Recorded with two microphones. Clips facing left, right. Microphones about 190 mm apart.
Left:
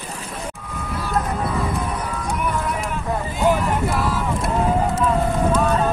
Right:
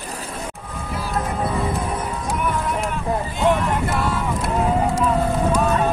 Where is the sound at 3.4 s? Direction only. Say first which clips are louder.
Left 1 dB; centre (ahead or behind).